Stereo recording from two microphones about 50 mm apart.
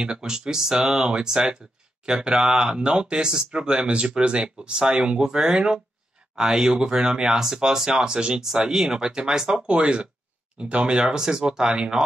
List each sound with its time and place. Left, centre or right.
0.0 s speech: centre